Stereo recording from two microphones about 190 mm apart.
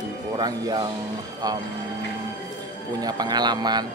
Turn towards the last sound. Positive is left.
turn(degrees=-20)  # may be behind; listen again after turning